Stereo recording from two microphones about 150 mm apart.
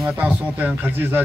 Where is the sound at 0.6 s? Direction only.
10° right (ahead or behind).